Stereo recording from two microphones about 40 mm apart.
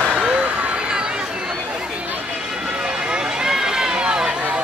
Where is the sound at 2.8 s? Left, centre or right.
Right.